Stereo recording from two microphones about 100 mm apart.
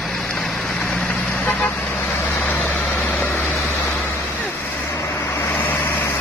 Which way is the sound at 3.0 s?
25° left (ahead or behind).